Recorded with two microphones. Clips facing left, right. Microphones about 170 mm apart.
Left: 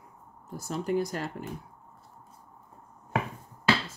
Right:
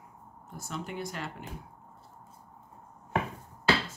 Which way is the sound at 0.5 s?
35° left (ahead or behind).